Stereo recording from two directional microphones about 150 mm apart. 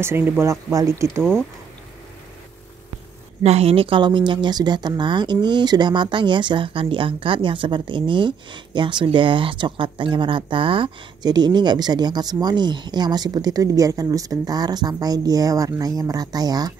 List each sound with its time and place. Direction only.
0.0 s speech: 15° right (ahead or behind)
3.4 s speech: 45° right (ahead or behind); by 16.7 s 25° right (ahead or behind)